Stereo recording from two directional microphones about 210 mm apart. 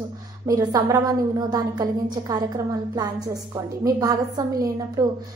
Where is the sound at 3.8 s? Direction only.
15° right (ahead or behind).